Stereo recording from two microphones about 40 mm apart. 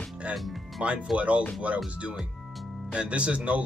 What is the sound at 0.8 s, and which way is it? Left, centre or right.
Speech, right.